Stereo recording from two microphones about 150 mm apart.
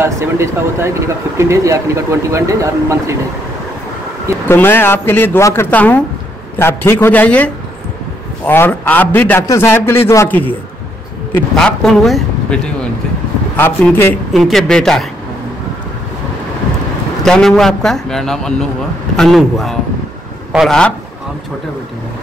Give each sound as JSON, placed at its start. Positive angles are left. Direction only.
{"t": 0.0, "sound": "speech", "side_deg": -15}
{"t": 4.5, "sound": "a man's voice", "side_deg": 15}
{"t": 11.5, "sound": "speech", "side_deg": 5}
{"t": 13.6, "sound": "a man's voice", "side_deg": 15}
{"t": 14.3, "sound": "a man's voice", "side_deg": 0}
{"t": 17.2, "sound": "a man's voice", "side_deg": 5}